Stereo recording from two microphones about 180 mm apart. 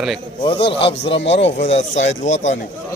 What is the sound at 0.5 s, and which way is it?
Speech, 30° left (ahead or behind).